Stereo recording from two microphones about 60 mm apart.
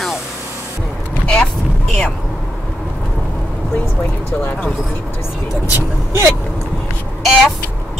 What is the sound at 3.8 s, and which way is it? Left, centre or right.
Speech, left.